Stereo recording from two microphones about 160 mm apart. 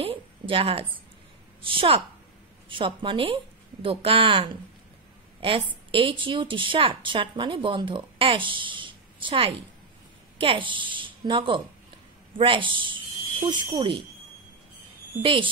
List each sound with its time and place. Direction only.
0.0 s a sound: 35° right (ahead or behind)
1.7 s speech: 35° right (ahead or behind)
5.9 s a woman's voice: 35° right (ahead or behind)